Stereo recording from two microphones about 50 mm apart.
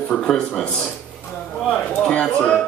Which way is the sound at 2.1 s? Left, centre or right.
Left.